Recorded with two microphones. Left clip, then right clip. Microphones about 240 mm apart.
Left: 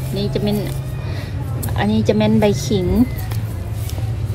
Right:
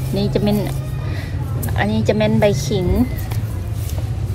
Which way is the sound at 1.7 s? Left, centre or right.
Centre.